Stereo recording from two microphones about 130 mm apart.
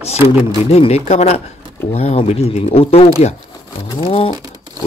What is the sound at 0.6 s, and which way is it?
Speech, 55° left (ahead or behind).